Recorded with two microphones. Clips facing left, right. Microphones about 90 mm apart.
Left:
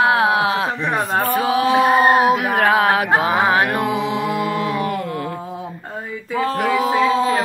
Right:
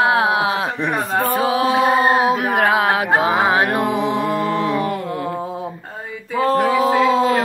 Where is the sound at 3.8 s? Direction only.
50° right (ahead or behind).